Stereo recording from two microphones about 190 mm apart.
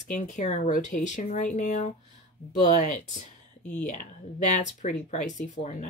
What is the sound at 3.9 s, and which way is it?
Speech, 40° left (ahead or behind).